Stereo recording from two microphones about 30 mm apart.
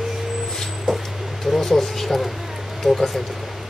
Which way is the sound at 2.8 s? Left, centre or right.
Centre.